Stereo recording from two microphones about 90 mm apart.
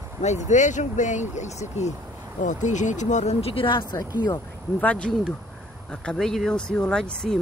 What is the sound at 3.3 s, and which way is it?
Speech, 90° left.